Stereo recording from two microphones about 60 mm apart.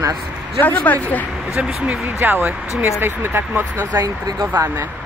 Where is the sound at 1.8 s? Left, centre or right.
Right.